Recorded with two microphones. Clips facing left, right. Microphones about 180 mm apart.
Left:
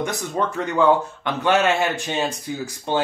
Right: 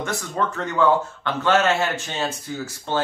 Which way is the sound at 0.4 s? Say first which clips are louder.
Left 1 dB; 15° left (ahead or behind).